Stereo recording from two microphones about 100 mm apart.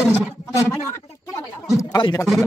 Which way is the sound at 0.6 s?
30° left (ahead or behind).